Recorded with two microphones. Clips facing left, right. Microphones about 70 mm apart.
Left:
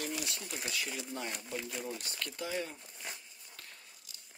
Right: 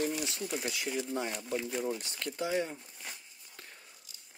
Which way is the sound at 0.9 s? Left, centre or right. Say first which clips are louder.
Right 6 dB; right.